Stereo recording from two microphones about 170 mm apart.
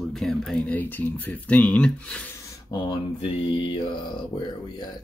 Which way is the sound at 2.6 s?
25° left (ahead or behind).